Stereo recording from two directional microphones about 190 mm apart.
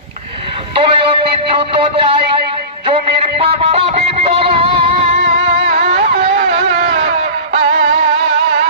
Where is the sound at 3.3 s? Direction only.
30° right (ahead or behind).